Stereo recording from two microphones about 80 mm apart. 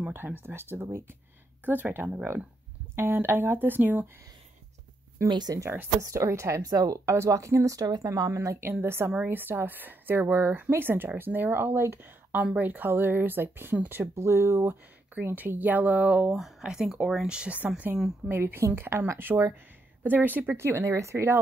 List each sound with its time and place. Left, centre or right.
0.1 s a woman's voice: right
5.3 s speech: right
5.6 s speech: right
5.9 s a woman's voice: right
14.7 s speech: right
16.3 s speech: centre
17.4 s speech: centre
18.3 s a woman's voice: right